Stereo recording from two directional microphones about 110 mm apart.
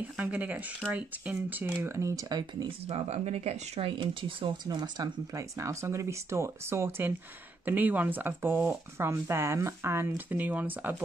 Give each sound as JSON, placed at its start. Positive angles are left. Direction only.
{"t": 0.2, "sound": "speech", "side_deg": -15}
{"t": 2.9, "sound": "speech", "side_deg": -75}
{"t": 4.7, "sound": "speech", "side_deg": -40}
{"t": 5.6, "sound": "speech", "side_deg": -25}